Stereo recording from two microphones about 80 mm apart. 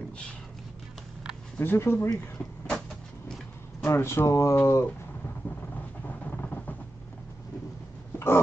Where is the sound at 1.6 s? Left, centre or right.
Left.